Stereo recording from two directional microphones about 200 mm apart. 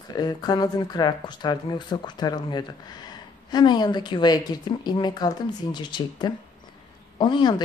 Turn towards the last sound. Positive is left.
turn(degrees=20)  # may be behind; listen again after turning